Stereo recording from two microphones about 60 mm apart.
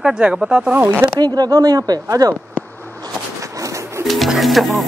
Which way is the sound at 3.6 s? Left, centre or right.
Right.